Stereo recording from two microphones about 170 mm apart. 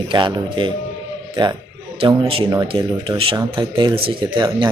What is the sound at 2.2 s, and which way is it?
Speech, 35° right (ahead or behind).